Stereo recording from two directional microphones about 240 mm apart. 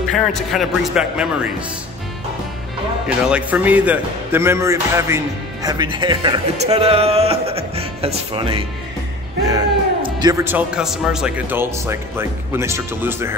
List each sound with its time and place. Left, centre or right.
0.1 s a man's voice: centre
3.3 s a man's voice: centre